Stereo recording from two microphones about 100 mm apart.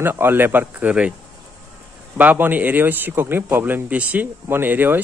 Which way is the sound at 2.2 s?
15° right (ahead or behind).